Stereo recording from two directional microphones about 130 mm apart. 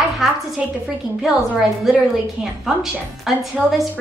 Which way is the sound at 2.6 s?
Centre (ahead or behind).